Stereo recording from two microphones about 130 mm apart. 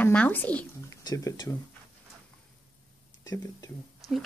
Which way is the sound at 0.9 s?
25° left (ahead or behind).